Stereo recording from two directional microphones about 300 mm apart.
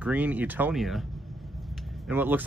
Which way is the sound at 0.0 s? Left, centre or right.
Centre.